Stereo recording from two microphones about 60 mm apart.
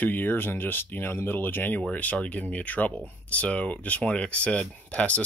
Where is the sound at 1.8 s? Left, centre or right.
Left.